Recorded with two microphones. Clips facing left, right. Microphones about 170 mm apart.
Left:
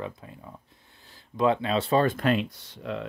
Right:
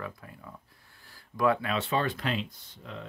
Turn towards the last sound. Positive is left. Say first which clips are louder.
# left 9 dB
turn(degrees=80)